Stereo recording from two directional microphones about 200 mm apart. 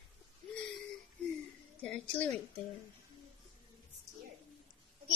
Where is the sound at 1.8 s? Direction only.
5° left (ahead or behind).